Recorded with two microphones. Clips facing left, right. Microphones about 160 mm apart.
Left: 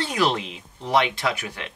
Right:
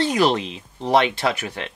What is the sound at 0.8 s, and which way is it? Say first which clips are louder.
Speech: right 3 dB; 30° right (ahead or behind).